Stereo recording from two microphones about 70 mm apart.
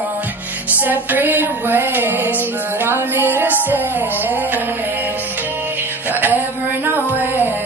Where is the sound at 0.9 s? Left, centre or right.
Right.